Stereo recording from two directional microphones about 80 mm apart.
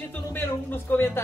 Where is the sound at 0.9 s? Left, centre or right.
Left.